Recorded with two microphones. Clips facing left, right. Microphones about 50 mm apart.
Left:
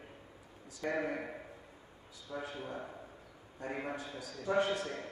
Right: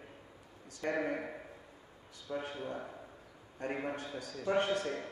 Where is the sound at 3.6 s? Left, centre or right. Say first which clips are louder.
Right 2 dB; right.